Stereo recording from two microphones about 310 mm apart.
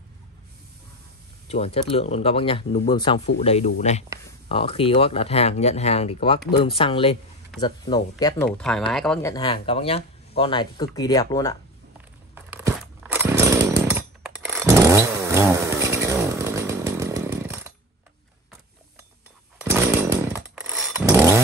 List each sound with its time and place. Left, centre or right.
1.5 s speech: centre
8.5 s speech: centre
12.4 s chainsaw: centre
19.6 s chainsaw: centre